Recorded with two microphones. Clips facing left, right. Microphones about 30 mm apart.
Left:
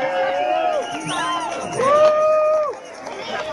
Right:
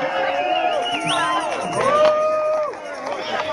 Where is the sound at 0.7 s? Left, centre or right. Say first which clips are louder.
Right 3 dB; right.